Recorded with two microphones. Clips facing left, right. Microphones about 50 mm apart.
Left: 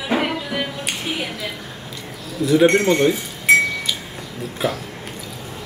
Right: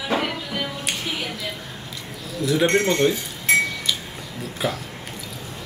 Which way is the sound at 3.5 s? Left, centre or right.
Left.